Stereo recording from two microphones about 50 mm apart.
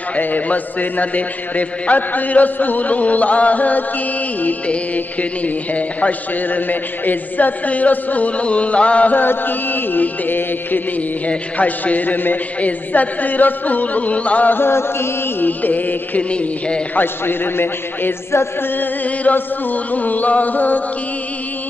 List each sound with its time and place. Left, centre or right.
0.1 s a man's voice: left
4.4 s music: left
9.1 s a man's voice: left
14.5 s a man's voice: left
15.4 s a man's voice: left
16.2 s music: left
16.9 s a man's voice: left
18.3 s music: left
18.8 s a man's voice: left